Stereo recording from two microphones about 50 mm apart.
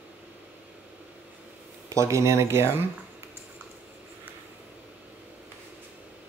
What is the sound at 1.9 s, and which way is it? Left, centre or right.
Speech, right.